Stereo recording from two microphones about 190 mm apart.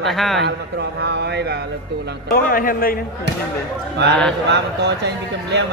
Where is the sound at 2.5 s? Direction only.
50° left (ahead or behind).